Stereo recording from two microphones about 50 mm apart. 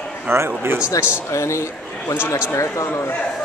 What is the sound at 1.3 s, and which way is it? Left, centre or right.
Speech, left.